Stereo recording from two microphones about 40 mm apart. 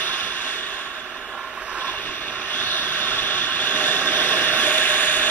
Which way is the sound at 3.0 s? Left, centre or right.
Left.